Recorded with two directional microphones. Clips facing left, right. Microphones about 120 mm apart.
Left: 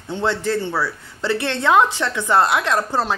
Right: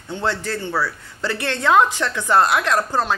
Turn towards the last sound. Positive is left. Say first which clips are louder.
# even
turn(degrees=25)  # may be behind; listen again after turning